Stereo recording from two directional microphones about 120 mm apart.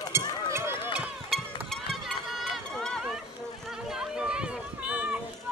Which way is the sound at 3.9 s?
5° right (ahead or behind).